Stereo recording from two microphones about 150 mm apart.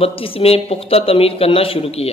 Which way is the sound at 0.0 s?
40° left (ahead or behind).